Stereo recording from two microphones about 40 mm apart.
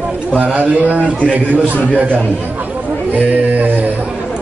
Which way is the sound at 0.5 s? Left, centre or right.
Right.